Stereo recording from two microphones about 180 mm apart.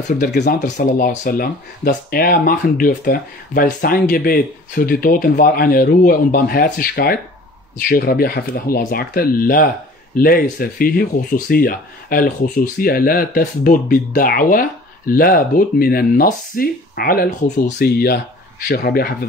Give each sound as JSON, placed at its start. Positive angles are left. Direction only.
{"t": 0.2, "sound": "speech", "side_deg": 60}
{"t": 0.6, "sound": "speech", "side_deg": 45}